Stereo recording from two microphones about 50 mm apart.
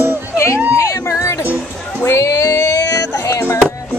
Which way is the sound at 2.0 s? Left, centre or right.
Left.